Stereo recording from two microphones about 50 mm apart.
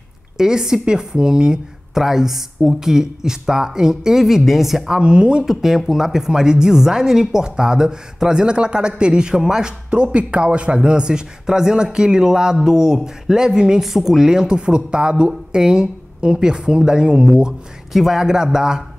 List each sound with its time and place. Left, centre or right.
0.4 s speech: centre
5.4 s speech: centre
17.9 s speech: centre